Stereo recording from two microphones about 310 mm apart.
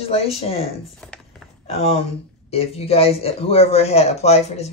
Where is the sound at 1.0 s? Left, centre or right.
Centre.